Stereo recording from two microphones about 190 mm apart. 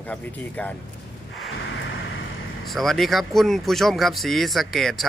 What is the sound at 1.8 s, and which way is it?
Vehicle, 75° left (ahead or behind).